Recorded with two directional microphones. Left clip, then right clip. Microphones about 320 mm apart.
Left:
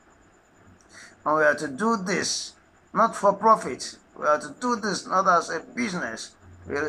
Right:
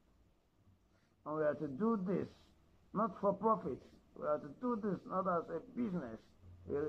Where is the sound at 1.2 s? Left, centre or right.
Centre.